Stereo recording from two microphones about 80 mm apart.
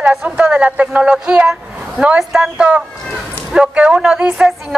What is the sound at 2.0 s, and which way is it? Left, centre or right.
A woman's voice, centre.